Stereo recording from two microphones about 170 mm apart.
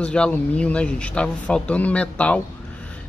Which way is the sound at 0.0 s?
5° left (ahead or behind).